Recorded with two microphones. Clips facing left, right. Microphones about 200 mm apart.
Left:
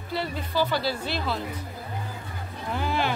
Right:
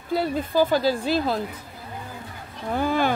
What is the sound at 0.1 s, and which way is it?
A woman's voice, 50° right (ahead or behind).